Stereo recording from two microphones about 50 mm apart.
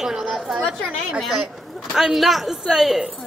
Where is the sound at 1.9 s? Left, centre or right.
Centre.